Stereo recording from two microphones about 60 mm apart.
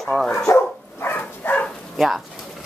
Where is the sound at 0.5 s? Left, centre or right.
Left.